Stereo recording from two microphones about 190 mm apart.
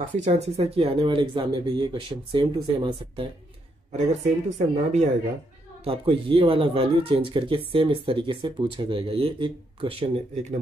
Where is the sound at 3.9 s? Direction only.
40° right (ahead or behind).